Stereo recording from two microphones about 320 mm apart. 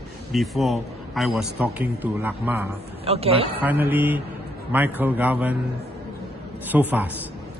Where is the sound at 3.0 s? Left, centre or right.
Centre.